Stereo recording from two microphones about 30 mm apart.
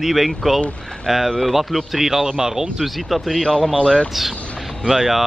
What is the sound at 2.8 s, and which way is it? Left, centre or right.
Speech, centre.